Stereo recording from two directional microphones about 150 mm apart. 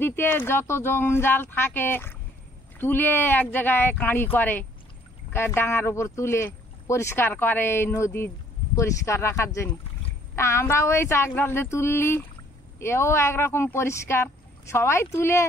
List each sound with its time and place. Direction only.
0.0 s speech: 15° left (ahead or behind)